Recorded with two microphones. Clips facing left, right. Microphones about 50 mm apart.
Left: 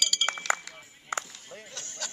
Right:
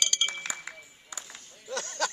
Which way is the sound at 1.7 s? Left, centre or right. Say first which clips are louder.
Right 12 dB; right.